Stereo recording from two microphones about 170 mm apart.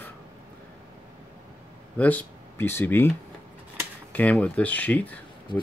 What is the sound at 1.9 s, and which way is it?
Speech, 10° left (ahead or behind).